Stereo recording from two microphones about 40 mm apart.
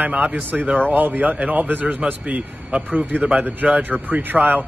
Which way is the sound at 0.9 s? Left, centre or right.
Right.